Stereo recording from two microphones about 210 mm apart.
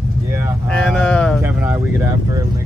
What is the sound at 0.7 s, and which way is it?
Speech, 5° left (ahead or behind).